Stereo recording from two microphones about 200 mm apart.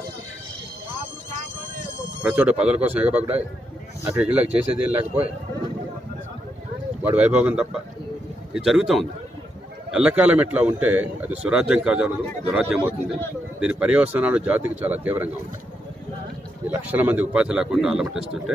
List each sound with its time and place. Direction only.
2.2 s a man's voice: 5° right (ahead or behind)
7.0 s a man's voice: 10° right (ahead or behind)
16.6 s a man's voice: 10° right (ahead or behind)